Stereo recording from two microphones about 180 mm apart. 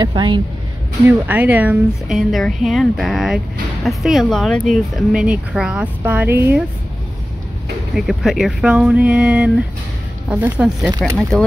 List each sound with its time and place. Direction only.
0.0 s speech: 25° right (ahead or behind)
1.0 s speech: 10° right (ahead or behind)
7.9 s speech: centre (ahead or behind)